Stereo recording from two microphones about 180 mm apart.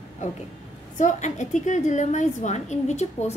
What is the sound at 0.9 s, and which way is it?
A woman's voice, 40° left (ahead or behind).